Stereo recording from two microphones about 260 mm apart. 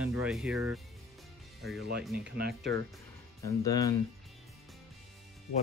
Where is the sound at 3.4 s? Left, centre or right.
Centre.